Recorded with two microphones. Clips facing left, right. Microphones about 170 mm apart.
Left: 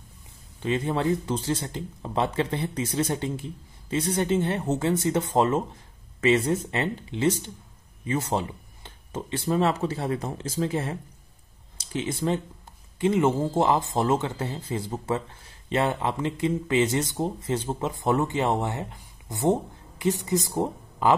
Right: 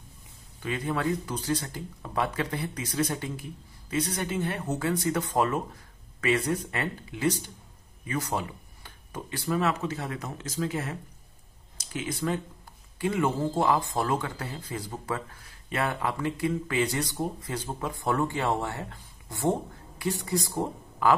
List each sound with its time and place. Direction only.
0.6 s speech: 25° left (ahead or behind)